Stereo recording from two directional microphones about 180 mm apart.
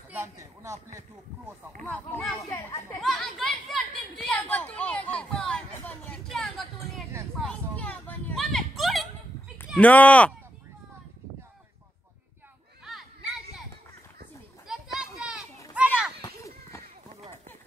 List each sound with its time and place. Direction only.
0.1 s speech: 15° right (ahead or behind)
1.9 s speech: 5° left (ahead or behind)
2.3 s speech: 20° left (ahead or behind)
3.0 s speech: centre (ahead or behind)
5.1 s a sound: 5° left (ahead or behind)
9.7 s speech: 10° left (ahead or behind)
12.8 s a sound: centre (ahead or behind)
14.7 s children playing: 5° right (ahead or behind)
16.2 s children playing: 15° left (ahead or behind)